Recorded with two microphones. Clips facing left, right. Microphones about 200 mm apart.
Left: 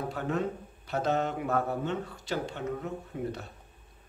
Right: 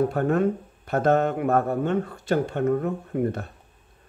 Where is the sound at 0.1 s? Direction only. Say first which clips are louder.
Right 9 dB; 55° right (ahead or behind).